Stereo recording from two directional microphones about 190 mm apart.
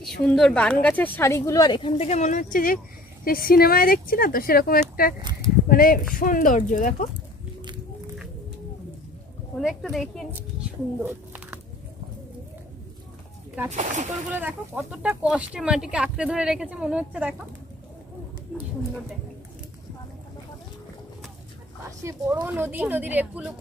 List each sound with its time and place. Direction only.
0.3 s speech: 5° left (ahead or behind); by 7.1 s 45° left (ahead or behind)
9.6 s speech: centre (ahead or behind)
11.0 s a sound: 10° right (ahead or behind)
13.7 s speech: 40° right (ahead or behind)
14.4 s speech: 5° right (ahead or behind)
18.5 s speech: centre (ahead or behind)
22.0 s speech: 10° right (ahead or behind)